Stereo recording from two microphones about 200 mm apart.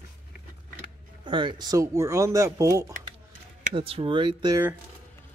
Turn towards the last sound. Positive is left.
turn(degrees=-20)  # may be behind; listen again after turning